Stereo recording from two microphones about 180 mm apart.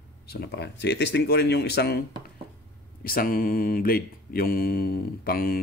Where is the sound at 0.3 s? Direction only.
70° left (ahead or behind).